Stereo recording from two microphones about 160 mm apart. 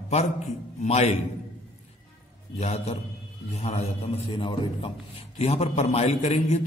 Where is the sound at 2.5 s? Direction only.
40° left (ahead or behind).